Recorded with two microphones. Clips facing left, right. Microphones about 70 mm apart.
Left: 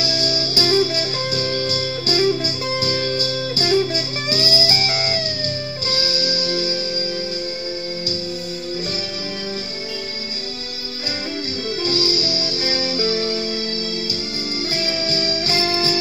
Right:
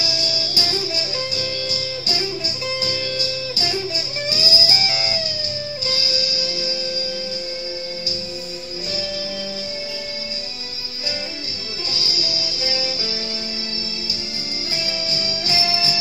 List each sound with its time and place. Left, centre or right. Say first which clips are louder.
0.0 s music: left 4 dB; left
11.9 s music: left 5 dB; left
14.7 s music: left 3 dB; left